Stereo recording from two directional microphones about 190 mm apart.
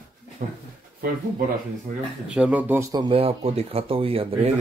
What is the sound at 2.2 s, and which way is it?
Speech, 5° right (ahead or behind).